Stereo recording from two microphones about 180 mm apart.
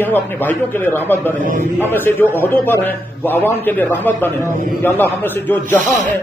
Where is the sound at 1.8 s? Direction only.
10° left (ahead or behind).